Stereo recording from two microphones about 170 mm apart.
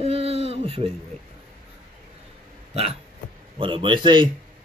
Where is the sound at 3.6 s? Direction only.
30° right (ahead or behind).